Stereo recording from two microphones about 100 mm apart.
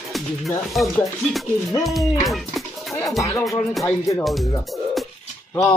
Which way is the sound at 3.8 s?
30° left (ahead or behind).